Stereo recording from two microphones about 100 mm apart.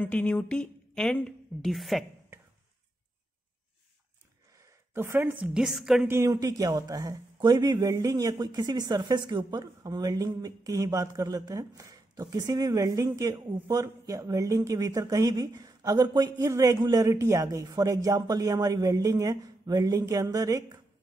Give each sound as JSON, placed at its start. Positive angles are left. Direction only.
{"t": 0.0, "sound": "a woman's voice", "side_deg": 10}
{"t": 4.6, "sound": "a woman's voice", "side_deg": -30}
{"t": 6.0, "sound": "speech", "side_deg": -30}